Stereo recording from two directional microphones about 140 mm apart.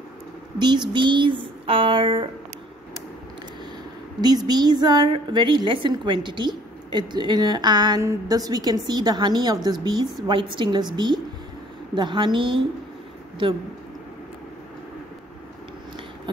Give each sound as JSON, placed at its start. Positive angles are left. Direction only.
{"t": 0.6, "sound": "a woman's voice", "side_deg": -30}
{"t": 4.2, "sound": "a woman's voice", "side_deg": -30}
{"t": 11.9, "sound": "a woman's voice", "side_deg": -35}